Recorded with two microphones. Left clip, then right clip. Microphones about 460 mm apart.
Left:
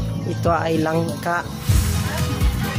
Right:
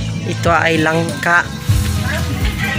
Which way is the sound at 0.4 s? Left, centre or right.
Left.